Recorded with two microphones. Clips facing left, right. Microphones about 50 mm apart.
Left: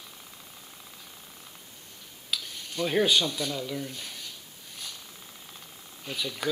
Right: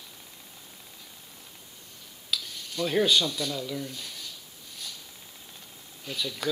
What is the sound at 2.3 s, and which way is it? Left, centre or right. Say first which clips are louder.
Speech: right 1 dB; centre.